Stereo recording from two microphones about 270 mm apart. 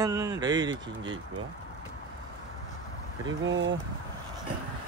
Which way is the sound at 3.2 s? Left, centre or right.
Right.